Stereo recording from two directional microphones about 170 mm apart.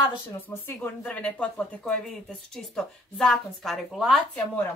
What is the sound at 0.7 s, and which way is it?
A woman's voice, 10° left (ahead or behind).